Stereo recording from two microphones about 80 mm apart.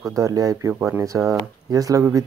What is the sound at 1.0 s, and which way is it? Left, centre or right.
Speech, right.